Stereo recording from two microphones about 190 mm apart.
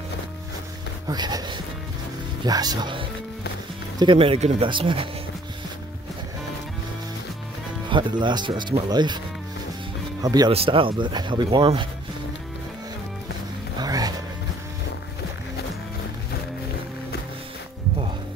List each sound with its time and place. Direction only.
1.0 s speech: 20° right (ahead or behind)
7.9 s speech: 25° right (ahead or behind)
10.2 s speech: 20° right (ahead or behind)
13.7 s music: 20° right (ahead or behind)